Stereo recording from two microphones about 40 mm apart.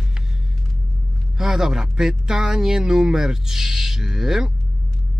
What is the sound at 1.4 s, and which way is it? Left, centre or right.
Speech, centre.